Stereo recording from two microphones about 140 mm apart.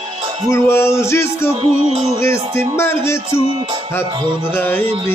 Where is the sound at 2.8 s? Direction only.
15° left (ahead or behind).